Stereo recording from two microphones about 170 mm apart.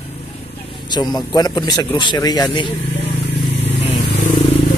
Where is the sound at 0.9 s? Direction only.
25° left (ahead or behind).